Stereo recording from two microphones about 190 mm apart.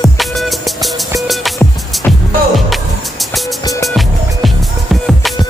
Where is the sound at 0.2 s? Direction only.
Centre (ahead or behind).